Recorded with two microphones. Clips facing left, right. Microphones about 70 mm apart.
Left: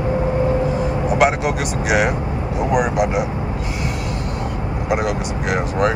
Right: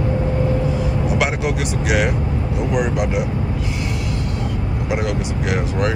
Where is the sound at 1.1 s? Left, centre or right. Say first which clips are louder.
Left 6 dB; centre.